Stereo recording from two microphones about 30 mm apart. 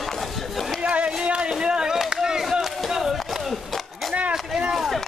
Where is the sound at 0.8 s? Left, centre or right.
Right.